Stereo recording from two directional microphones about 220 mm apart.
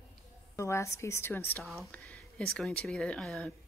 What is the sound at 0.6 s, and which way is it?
Speech, 15° left (ahead or behind).